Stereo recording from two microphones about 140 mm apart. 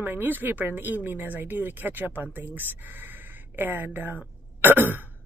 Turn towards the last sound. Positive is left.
turn(degrees=-15)  # may be behind; listen again after turning